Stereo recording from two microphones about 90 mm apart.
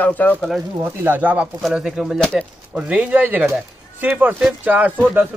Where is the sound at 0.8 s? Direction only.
20° right (ahead or behind).